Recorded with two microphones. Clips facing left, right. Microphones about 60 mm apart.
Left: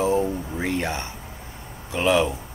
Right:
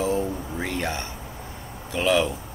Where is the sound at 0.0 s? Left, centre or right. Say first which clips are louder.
Left 3 dB; centre.